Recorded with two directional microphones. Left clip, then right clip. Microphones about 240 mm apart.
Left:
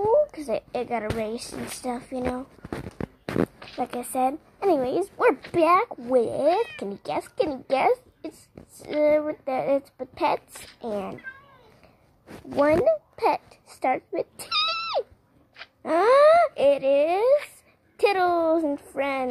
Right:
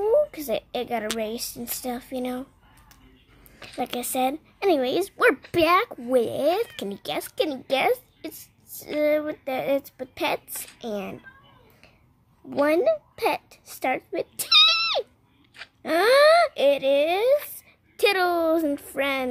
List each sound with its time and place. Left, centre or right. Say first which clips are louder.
0.3 s speech: even; centre
3.5 s speech: even; centre
12.5 s a child's voice: left 1 dB; centre